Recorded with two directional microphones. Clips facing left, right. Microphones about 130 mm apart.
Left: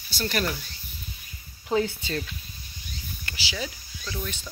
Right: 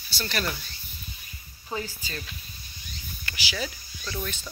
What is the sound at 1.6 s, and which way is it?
Speech, 65° left (ahead or behind).